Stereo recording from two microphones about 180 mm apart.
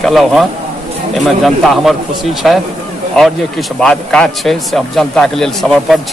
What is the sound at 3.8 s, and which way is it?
A man's voice, 5° left (ahead or behind).